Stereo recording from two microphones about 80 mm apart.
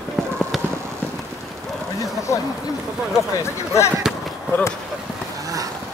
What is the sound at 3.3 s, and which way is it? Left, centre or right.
Speech, left.